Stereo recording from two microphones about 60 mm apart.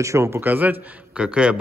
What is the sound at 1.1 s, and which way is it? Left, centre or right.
Speech, centre.